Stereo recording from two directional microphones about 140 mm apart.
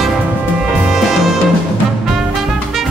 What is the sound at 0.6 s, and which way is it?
Music, 5° right (ahead or behind).